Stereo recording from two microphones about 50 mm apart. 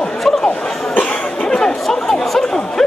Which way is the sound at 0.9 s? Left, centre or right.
Left.